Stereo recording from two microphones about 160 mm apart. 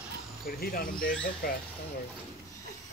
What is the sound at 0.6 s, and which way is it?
Speech, 65° left (ahead or behind).